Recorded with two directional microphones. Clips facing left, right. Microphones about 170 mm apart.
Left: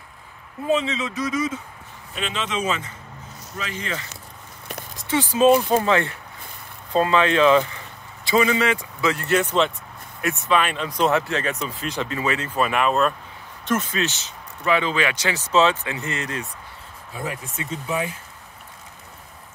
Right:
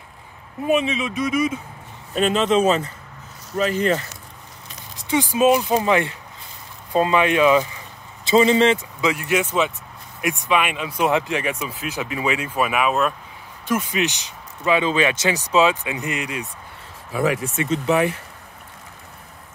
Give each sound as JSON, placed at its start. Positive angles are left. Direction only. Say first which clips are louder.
{"t": 0.7, "sound": "speech", "louder": "right 2 dB", "side_deg": -15}
{"t": 2.1, "sound": "speech", "louder": "right 10 dB", "side_deg": -45}
{"t": 5.0, "sound": "speech", "louder": "even", "side_deg": -15}
{"t": 8.3, "sound": "speech", "louder": "right 4 dB", "side_deg": -25}
{"t": 9.0, "sound": "speech", "louder": "left 1 dB", "side_deg": -10}
{"t": 17.1, "sound": "speech", "louder": "right 10 dB", "side_deg": -90}